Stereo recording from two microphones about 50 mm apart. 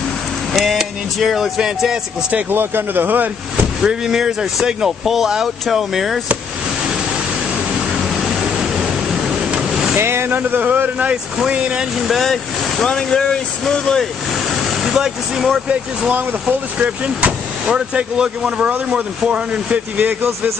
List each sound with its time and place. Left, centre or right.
0.5 s music: centre
0.7 s speech: centre
2.5 s speech: right
3.8 s speech: centre
8.2 s pink noise: centre
9.9 s speech: right
12.0 s speech: centre
12.8 s speech: centre
14.5 s speech: centre
16.4 s speech: right
17.6 s speech: centre